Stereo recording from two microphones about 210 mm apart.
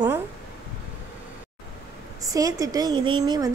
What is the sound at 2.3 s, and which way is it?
Speech, 15° right (ahead or behind).